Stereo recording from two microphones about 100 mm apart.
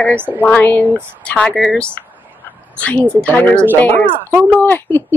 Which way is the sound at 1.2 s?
10° left (ahead or behind).